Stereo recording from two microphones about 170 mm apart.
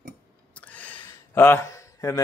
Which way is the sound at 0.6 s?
10° left (ahead or behind).